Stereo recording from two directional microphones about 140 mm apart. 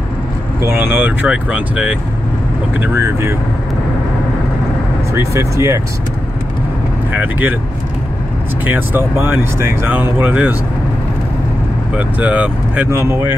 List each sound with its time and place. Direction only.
0.7 s speech: 15° right (ahead or behind)
2.8 s speech: 15° right (ahead or behind)
5.1 s speech: 20° right (ahead or behind)
7.1 s speech: 15° right (ahead or behind)
8.6 s speech: 15° right (ahead or behind)
11.9 s speech: 10° right (ahead or behind)